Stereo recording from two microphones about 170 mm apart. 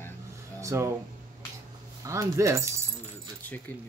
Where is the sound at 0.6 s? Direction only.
15° right (ahead or behind).